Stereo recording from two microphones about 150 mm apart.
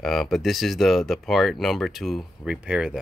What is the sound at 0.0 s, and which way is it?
Speech, centre (ahead or behind).